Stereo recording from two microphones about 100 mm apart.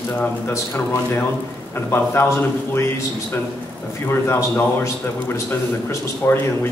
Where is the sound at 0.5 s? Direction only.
25° left (ahead or behind).